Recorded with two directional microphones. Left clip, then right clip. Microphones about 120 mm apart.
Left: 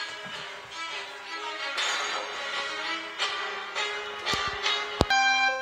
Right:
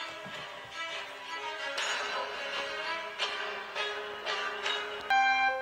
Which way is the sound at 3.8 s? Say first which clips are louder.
Left 4 dB; 40° left (ahead or behind).